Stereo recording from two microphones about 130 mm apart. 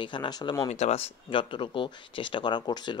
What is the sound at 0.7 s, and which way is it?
Speech, 55° left (ahead or behind).